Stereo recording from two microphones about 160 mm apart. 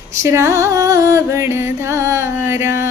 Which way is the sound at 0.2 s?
15° right (ahead or behind).